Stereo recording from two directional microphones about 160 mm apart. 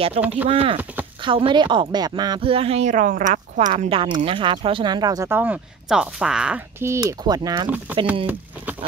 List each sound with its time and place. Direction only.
0.2 s speech: 50° right (ahead or behind)
0.5 s speech: 35° right (ahead or behind); by 3.9 s 50° right (ahead or behind)
3.9 s speech: 35° right (ahead or behind)